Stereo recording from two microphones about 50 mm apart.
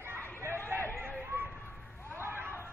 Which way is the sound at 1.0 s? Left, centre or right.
Right.